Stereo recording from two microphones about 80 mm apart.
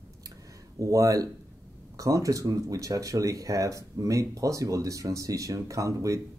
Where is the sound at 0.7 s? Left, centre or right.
Right.